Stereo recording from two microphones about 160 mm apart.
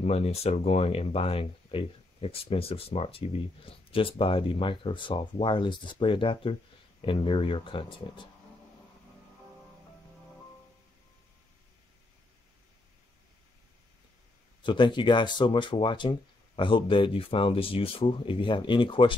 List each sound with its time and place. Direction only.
0.0 s speech: 40° left (ahead or behind)
14.6 s speech: 30° left (ahead or behind)